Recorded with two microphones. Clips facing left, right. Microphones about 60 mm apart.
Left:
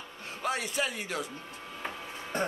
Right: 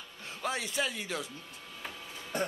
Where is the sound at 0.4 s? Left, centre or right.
Left.